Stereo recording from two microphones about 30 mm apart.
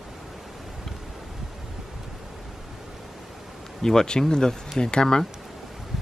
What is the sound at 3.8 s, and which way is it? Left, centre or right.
Speech, centre.